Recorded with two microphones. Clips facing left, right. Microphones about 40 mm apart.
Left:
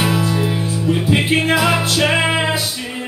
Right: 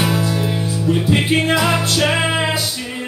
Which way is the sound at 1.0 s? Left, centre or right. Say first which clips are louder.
Even; centre.